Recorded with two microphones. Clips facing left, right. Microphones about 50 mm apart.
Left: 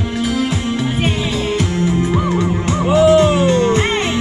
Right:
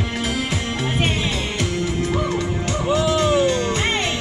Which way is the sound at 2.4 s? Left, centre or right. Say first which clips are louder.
Left 6 dB; left.